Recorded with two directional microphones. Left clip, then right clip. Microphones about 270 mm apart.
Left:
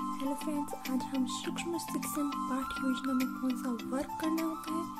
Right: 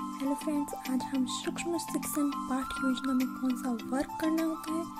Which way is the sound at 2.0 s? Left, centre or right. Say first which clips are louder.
Right 2 dB; centre.